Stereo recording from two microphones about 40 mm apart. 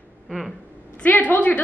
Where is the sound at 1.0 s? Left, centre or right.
Left.